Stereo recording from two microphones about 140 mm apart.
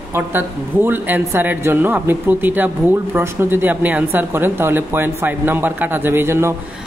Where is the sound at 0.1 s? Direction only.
15° right (ahead or behind).